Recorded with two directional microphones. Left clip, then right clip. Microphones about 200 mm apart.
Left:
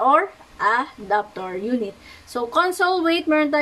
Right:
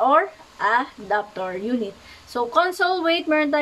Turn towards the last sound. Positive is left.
turn(degrees=15)  # may be behind; listen again after turning